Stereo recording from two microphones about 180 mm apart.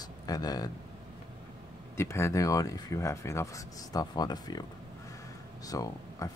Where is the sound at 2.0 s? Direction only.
15° left (ahead or behind).